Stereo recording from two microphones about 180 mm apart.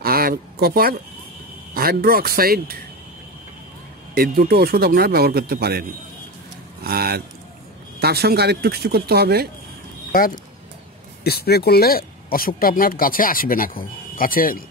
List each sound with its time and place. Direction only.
0.0 s a sound: 55° right (ahead or behind)
1.7 s speech: 55° right (ahead or behind)
4.1 s speech: 60° right (ahead or behind)
10.1 s speech: 50° left (ahead or behind)
11.2 s speech: 60° left (ahead or behind)